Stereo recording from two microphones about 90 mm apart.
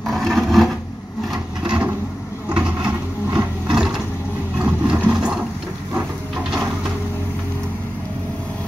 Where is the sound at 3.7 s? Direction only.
5° right (ahead or behind).